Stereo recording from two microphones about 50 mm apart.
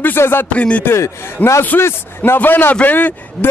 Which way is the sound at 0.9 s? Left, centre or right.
Left.